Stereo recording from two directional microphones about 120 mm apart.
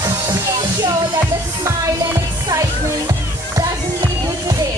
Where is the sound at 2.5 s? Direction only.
30° right (ahead or behind).